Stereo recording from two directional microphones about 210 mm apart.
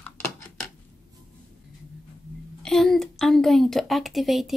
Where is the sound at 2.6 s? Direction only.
Centre (ahead or behind).